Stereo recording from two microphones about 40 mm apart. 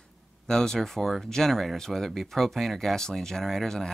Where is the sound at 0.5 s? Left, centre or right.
Centre.